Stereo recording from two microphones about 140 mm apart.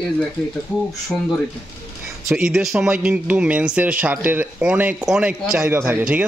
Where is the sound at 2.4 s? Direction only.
5° right (ahead or behind).